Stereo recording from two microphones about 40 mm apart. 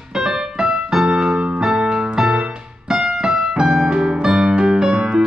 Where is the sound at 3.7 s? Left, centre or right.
Centre.